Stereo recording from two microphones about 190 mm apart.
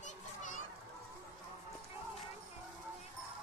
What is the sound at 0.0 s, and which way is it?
Children playing, 40° left (ahead or behind).